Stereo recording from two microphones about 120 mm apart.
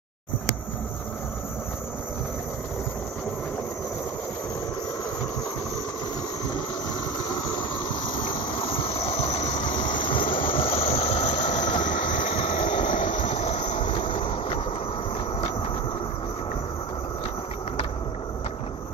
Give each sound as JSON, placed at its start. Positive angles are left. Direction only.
{"t": 8.8, "sound": "vehicle", "side_deg": 55}
{"t": 9.6, "sound": "vehicle", "side_deg": 40}
{"t": 11.1, "sound": "vehicle", "side_deg": 90}
{"t": 13.3, "sound": "vehicle", "side_deg": 70}
{"t": 13.7, "sound": "vehicle", "side_deg": 45}